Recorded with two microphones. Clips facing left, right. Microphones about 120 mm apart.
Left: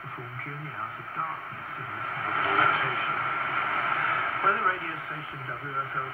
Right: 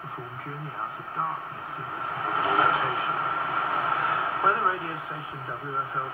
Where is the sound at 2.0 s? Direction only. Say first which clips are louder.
Right 2 dB; 20° right (ahead or behind).